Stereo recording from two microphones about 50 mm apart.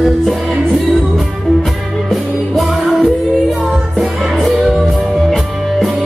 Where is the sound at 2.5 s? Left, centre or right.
Centre.